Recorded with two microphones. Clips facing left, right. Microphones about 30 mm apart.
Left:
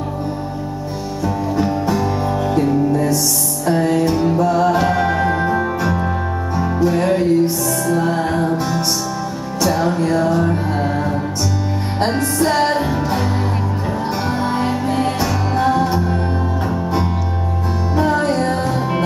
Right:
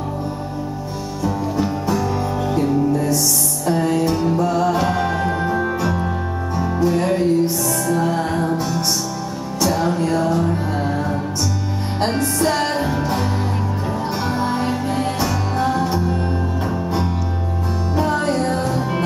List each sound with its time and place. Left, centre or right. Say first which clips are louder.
1.2 s music: left 2 dB; centre
14.4 s music: left 2 dB; centre
17.9 s music: left 3 dB; centre